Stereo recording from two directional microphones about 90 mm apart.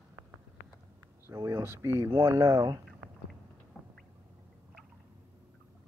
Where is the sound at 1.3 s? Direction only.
35° right (ahead or behind).